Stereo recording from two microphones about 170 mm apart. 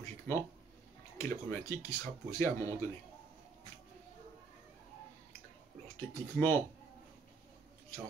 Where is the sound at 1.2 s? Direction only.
15° left (ahead or behind).